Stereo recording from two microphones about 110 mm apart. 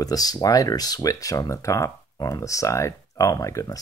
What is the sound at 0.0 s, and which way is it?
Speech, 35° left (ahead or behind).